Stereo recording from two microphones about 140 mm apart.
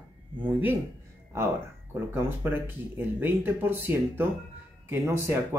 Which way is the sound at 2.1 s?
15° right (ahead or behind).